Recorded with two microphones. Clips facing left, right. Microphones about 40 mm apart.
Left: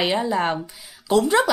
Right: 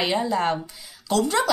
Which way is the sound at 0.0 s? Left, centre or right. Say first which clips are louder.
Left 1 dB; centre.